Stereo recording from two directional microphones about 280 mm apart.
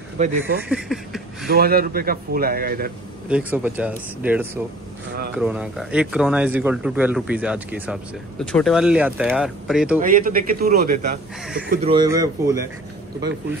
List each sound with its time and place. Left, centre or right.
0.4 s a sound: centre
1.5 s speech: right
3.3 s speech: centre
9.9 s speech: right
11.8 s speech: centre